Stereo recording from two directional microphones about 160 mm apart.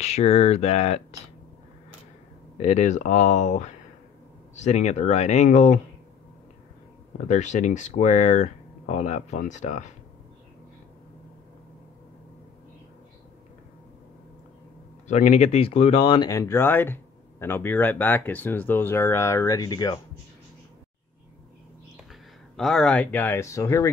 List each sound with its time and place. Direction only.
0.0 s speech: 40° left (ahead or behind)
2.5 s speech: 45° left (ahead or behind)
7.2 s speech: 45° left (ahead or behind)
15.0 s speech: 50° left (ahead or behind); by 20.0 s 25° left (ahead or behind)
22.6 s speech: centre (ahead or behind); by 23.9 s 20° left (ahead or behind)